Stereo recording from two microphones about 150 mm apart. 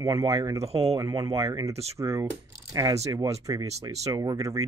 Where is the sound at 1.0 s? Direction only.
25° right (ahead or behind).